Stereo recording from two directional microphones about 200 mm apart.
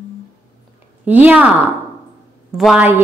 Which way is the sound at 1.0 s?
5° right (ahead or behind).